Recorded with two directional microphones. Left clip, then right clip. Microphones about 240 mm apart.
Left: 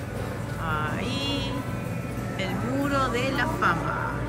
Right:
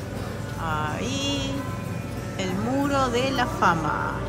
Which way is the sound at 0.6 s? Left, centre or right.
Centre.